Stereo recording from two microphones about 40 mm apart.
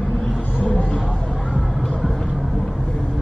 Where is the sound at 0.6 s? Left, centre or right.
Left.